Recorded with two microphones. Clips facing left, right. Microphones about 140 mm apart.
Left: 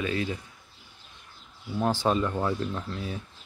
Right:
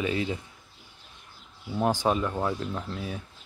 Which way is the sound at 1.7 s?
15° right (ahead or behind).